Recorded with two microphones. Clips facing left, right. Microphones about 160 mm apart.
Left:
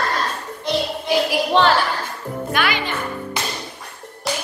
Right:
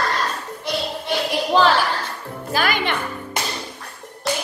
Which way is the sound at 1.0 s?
Centre (ahead or behind).